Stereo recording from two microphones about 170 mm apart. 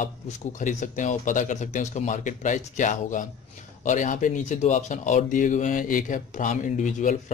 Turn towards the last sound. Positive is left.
turn(degrees=50)  # may be behind; listen again after turning